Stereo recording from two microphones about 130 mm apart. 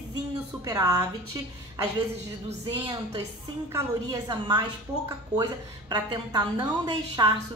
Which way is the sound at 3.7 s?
30° right (ahead or behind).